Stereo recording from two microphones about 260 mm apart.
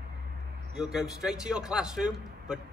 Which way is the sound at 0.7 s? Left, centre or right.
Centre.